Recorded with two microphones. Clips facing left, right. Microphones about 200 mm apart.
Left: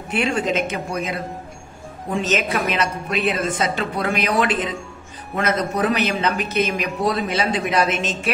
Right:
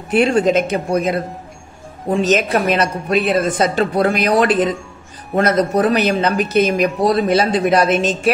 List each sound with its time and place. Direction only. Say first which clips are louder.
0.1 s a woman's voice: right 8 dB; 35° right (ahead or behind)